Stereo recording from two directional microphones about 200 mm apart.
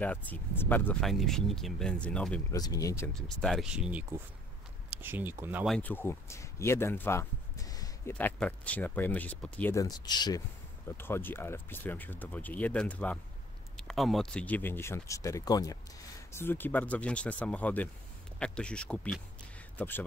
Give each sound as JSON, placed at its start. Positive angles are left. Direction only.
{"t": 0.0, "sound": "speech", "side_deg": 10}
{"t": 2.5, "sound": "speech", "side_deg": 15}
{"t": 3.2, "sound": "speech", "side_deg": 0}
{"t": 5.8, "sound": "speech", "side_deg": 10}